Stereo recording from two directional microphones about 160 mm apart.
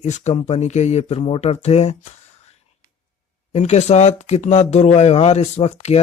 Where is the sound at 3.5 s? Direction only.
45° left (ahead or behind).